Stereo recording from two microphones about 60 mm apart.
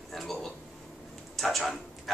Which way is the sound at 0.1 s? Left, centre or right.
Centre.